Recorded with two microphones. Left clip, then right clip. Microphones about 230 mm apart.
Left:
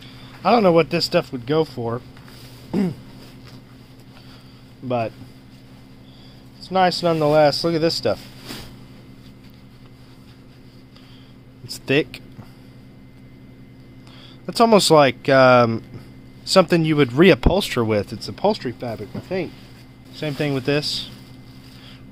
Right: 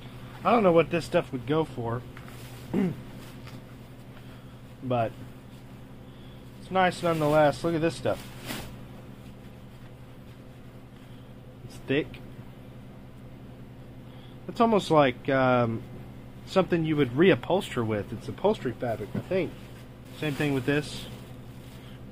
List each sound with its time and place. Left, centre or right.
0.4 s speech: left
4.8 s speech: left
6.7 s speech: left
11.6 s speech: left
14.4 s speech: left